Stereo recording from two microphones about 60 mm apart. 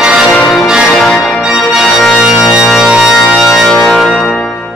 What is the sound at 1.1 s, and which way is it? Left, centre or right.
Music, centre.